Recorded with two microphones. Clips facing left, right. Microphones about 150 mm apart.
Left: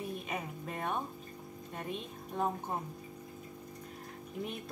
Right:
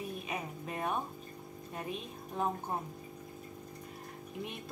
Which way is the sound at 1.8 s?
5° right (ahead or behind).